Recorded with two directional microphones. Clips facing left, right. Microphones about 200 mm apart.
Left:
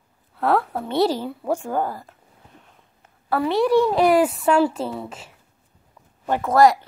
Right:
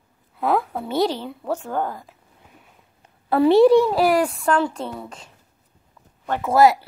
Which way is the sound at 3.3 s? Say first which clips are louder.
Right 7 dB; 25° right (ahead or behind).